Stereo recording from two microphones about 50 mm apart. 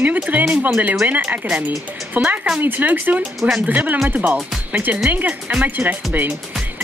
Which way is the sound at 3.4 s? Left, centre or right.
Centre.